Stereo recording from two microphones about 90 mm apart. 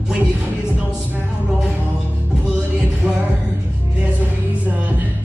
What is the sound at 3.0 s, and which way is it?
Music, 10° right (ahead or behind).